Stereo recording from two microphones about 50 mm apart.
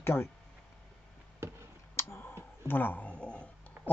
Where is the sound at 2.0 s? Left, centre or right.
Left.